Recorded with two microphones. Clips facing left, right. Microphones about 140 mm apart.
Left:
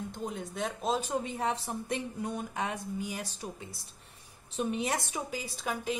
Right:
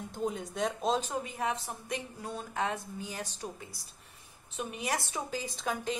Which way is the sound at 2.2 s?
15° left (ahead or behind).